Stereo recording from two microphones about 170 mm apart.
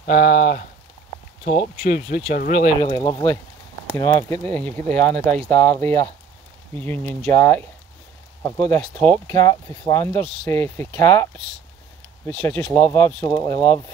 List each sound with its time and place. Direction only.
0.0 s speech: 45° left (ahead or behind)
2.8 s speech: 25° left (ahead or behind); by 9.4 s 5° left (ahead or behind)
9.4 s speech: 20° left (ahead or behind)
12.3 s speech: 10° left (ahead or behind)